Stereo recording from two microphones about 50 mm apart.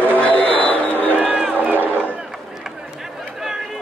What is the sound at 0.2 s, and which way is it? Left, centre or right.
Music, left.